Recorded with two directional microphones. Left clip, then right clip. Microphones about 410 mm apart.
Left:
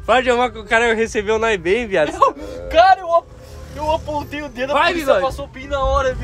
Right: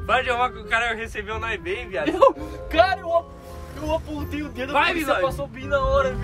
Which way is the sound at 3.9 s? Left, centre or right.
Centre.